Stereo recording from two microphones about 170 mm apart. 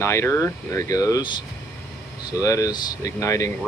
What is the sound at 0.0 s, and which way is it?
Speech, 15° left (ahead or behind).